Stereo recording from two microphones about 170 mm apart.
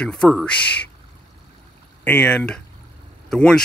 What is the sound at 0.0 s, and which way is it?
Speech, 5° left (ahead or behind).